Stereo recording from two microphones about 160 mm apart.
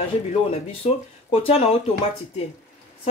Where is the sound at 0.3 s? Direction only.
40° left (ahead or behind).